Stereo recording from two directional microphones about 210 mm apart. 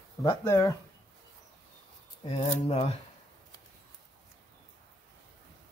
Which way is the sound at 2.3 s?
30° left (ahead or behind).